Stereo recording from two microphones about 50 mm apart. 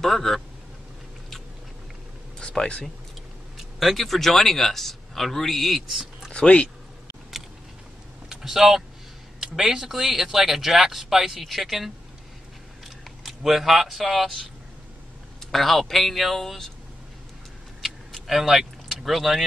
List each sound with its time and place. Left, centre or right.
0.0 s a man's voice: centre
2.3 s speech: centre
3.5 s a man's voice: centre
6.3 s speech: left
8.3 s speech: centre
15.5 s a man's voice: centre
17.8 s vehicle: centre